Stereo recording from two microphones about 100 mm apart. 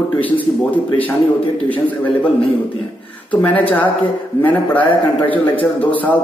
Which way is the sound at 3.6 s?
15° left (ahead or behind).